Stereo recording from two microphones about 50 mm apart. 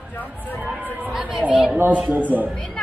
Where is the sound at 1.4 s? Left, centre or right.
Right.